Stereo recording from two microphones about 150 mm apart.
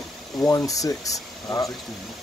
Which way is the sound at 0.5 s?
20° left (ahead or behind).